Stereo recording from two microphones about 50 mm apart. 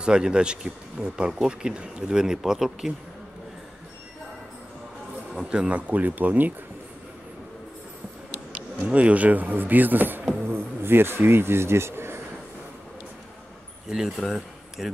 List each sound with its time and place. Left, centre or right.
0.0 s speech: centre
5.4 s speech: centre; by 6.5 s right
8.8 s speech: right
10.5 s speech: right
13.8 s speech: centre